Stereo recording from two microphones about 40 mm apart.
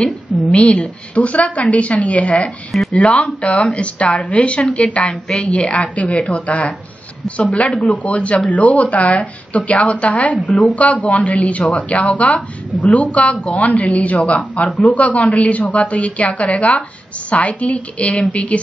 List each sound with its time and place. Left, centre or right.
0.5 s speech: left